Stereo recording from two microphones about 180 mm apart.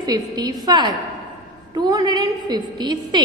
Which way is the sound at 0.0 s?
20° right (ahead or behind).